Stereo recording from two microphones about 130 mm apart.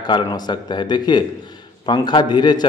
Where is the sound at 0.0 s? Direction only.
35° left (ahead or behind).